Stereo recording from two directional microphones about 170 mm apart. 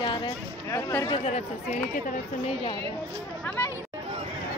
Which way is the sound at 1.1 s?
40° left (ahead or behind).